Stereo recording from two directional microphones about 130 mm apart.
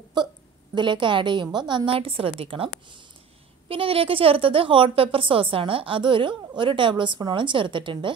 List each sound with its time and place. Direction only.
0.7 s a woman's voice: 40° right (ahead or behind)